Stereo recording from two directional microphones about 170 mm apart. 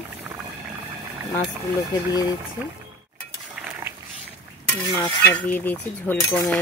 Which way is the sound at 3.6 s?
10° right (ahead or behind).